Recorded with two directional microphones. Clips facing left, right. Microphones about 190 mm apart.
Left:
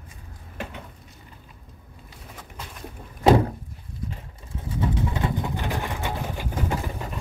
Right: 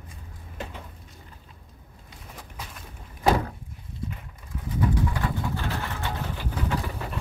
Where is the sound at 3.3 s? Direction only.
30° left (ahead or behind).